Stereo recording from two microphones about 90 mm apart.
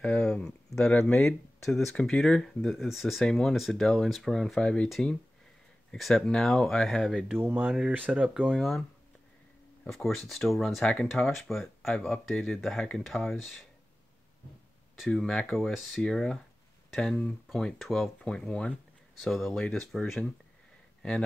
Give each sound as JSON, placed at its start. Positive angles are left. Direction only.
{"t": 0.0, "sound": "speech", "side_deg": 10}
{"t": 5.9, "sound": "speech", "side_deg": 5}
{"t": 7.2, "sound": "speech", "side_deg": -20}
{"t": 8.5, "sound": "speech", "side_deg": 5}
{"t": 9.8, "sound": "speech", "side_deg": 5}
{"t": 15.1, "sound": "speech", "side_deg": 5}